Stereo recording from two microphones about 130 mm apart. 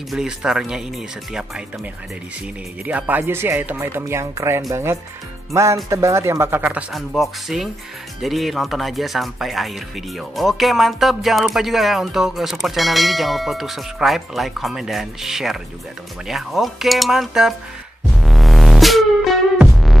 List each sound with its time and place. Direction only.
0.1 s speech: 5° right (ahead or behind)
2.8 s speech: 10° right (ahead or behind)
6.9 s speech: centre (ahead or behind)
18.2 s music: centre (ahead or behind)